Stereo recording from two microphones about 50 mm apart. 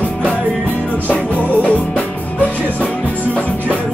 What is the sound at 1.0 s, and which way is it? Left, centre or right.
Music, left.